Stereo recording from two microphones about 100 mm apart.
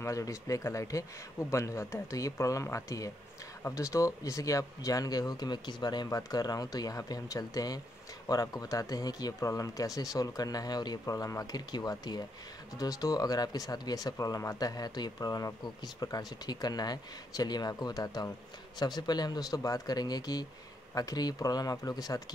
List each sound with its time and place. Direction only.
0.0 s speech: 30° left (ahead or behind)